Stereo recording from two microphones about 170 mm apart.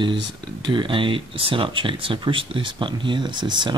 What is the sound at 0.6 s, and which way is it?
Speech, 30° right (ahead or behind).